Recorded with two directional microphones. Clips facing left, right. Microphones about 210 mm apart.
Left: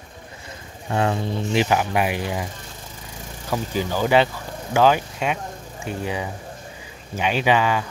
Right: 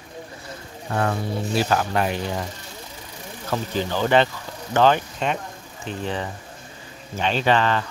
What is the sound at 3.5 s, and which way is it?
Speech, 10° left (ahead or behind).